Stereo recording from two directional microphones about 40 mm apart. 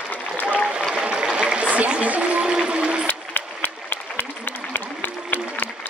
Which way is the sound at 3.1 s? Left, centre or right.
Left.